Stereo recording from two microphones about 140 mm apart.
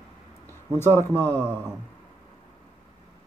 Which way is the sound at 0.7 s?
15° left (ahead or behind).